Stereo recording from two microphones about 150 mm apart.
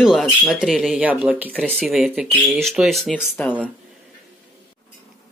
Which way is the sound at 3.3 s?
10° left (ahead or behind).